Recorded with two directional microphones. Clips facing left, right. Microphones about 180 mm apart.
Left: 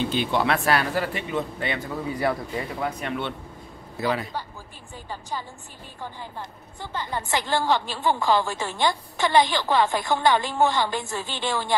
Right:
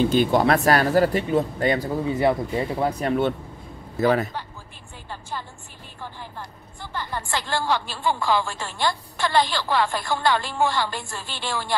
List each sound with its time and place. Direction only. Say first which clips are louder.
0.0 s speech: right 5 dB; 45° right (ahead or behind)
2.0 s a man's voice: right 4 dB; 25° right (ahead or behind); by 4.3 s 50° right (ahead or behind)
6.8 s a woman's voice: left 1 dB; 20° left (ahead or behind)